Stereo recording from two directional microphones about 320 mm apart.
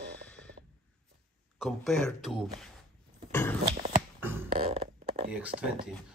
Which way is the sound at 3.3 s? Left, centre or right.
Centre.